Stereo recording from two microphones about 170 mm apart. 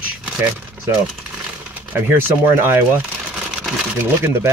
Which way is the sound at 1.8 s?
10° right (ahead or behind).